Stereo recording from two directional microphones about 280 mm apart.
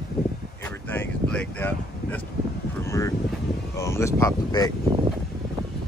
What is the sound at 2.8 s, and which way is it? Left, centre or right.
Vehicle, centre.